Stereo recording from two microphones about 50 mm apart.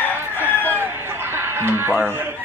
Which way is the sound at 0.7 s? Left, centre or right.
Right.